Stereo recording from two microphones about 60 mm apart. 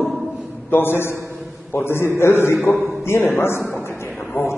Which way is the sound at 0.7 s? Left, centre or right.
Left.